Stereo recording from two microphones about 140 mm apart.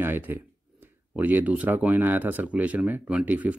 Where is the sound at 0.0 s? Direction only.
15° right (ahead or behind).